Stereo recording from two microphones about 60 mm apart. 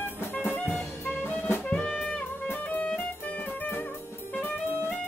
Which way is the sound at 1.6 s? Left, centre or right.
Centre.